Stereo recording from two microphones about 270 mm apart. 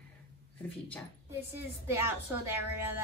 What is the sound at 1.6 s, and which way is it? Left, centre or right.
A woman's voice, centre.